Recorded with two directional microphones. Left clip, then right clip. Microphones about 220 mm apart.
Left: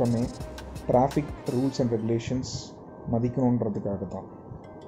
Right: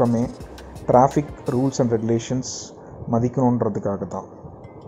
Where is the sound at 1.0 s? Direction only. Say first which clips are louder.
Right 7 dB; 5° right (ahead or behind).